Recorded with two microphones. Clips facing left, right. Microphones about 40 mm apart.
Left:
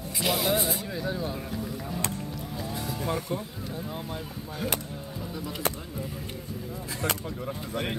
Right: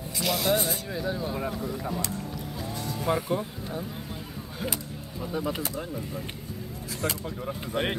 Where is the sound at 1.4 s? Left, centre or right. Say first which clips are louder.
Right 3 dB; right.